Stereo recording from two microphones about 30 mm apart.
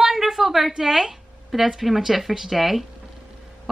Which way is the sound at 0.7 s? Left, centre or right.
Centre.